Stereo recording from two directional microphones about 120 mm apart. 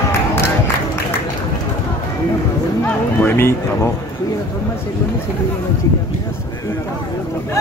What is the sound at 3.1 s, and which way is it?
Speech, 20° left (ahead or behind).